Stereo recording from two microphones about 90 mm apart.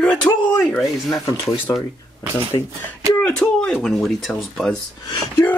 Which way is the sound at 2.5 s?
65° left (ahead or behind).